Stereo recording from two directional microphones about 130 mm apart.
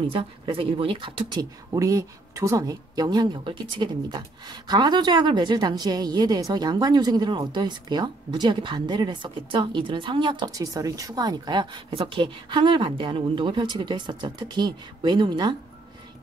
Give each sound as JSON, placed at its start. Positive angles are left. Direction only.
{"t": 0.1, "sound": "speech", "side_deg": -45}
{"t": 1.4, "sound": "speech", "side_deg": -25}